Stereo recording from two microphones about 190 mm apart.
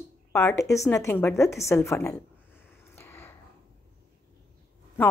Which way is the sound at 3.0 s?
15° left (ahead or behind).